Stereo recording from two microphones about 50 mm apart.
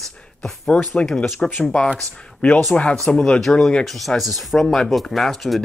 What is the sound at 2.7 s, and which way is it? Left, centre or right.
Speech, left.